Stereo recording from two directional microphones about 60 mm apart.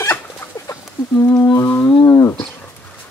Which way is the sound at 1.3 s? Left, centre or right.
Left.